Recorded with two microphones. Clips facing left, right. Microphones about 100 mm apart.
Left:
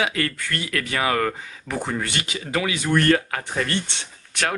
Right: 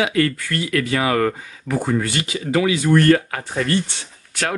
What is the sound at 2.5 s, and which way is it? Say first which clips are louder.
Speech: right 7 dB; 30° right (ahead or behind).